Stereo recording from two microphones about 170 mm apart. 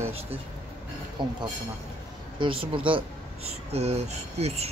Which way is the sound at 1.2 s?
25° right (ahead or behind).